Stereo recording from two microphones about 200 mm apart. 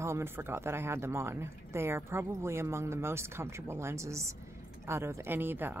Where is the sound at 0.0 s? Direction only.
15° right (ahead or behind).